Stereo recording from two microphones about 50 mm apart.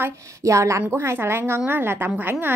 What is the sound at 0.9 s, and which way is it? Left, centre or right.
A woman's voice, right.